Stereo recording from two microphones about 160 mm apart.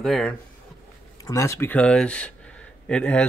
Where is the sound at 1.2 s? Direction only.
20° left (ahead or behind).